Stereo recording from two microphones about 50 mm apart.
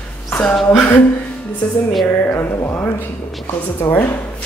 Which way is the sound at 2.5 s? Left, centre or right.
Left.